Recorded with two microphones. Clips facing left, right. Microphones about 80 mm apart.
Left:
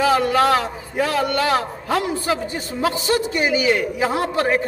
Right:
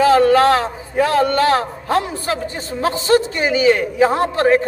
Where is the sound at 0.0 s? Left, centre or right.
Right.